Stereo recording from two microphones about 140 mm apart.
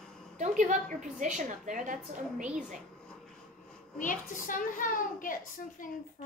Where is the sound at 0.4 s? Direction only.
60° right (ahead or behind).